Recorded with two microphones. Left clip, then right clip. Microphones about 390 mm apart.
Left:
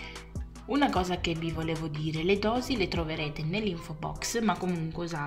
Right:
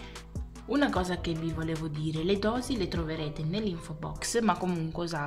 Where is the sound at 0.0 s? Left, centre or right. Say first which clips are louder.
Left 3 dB; centre.